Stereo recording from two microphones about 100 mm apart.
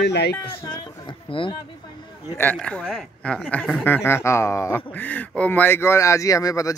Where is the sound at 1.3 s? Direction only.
60° left (ahead or behind).